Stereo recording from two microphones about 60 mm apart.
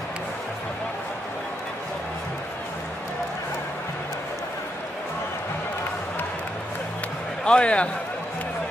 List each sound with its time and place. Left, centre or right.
7.4 s a man's voice: centre